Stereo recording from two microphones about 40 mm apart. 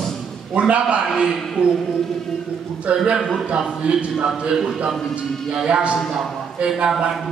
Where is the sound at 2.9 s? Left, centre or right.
Right; by 4.8 s centre.